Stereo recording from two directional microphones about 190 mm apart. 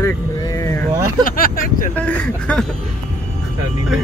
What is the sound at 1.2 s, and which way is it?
Speech, 50° left (ahead or behind).